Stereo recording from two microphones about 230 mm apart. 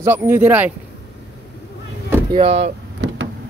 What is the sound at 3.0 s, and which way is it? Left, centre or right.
Vehicle, right.